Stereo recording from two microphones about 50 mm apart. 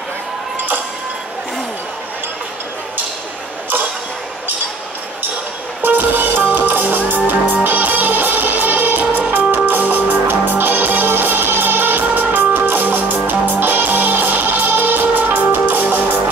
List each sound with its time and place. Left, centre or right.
5.8 s music: right